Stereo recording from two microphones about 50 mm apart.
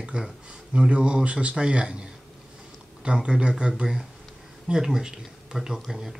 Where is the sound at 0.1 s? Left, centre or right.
Centre.